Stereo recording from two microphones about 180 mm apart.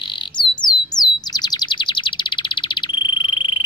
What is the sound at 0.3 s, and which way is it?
Bird, 25° left (ahead or behind).